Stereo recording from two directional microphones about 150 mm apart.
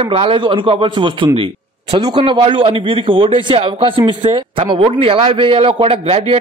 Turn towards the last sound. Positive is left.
turn(degrees=-40)  # may be behind; listen again after turning